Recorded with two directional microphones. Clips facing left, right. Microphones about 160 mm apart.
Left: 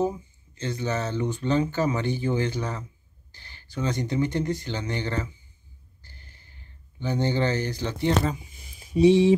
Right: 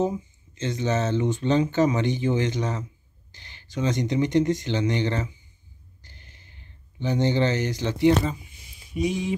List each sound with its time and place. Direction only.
0.6 s speech: 20° right (ahead or behind)
6.0 s a sound: 20° right (ahead or behind)
8.9 s speech: 30° left (ahead or behind)